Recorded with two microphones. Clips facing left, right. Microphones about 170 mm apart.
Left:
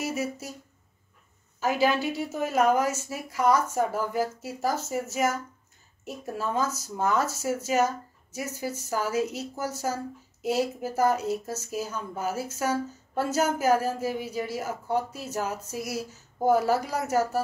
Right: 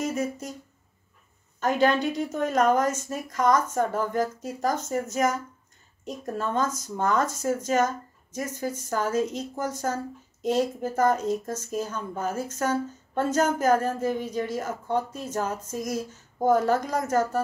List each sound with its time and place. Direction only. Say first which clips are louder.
0.0 s speech: right 2 dB; 5° left (ahead or behind)
1.6 s a woman's voice: right 2 dB; 5° left (ahead or behind)